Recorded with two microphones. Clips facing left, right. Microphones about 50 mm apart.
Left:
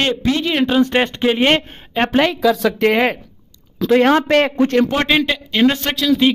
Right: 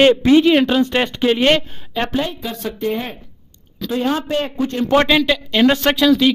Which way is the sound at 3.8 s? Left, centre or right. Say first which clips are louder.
Left 7 dB; left.